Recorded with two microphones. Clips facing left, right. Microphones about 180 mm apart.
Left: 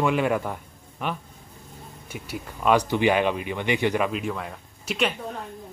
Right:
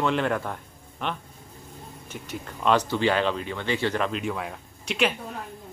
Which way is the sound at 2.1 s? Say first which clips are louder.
Left 1 dB; 10° left (ahead or behind).